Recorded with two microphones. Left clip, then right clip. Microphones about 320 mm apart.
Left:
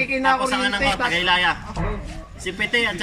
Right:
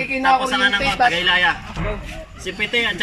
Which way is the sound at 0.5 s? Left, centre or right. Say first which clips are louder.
Right 3 dB; centre.